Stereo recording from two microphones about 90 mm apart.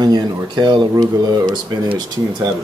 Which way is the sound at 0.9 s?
50° right (ahead or behind).